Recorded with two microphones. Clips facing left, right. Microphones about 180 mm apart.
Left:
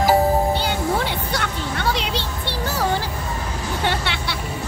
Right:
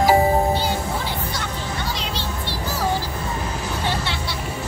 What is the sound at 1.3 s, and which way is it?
Music, 65° left (ahead or behind).